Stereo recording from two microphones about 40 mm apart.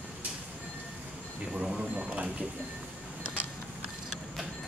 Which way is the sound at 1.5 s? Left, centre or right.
Centre.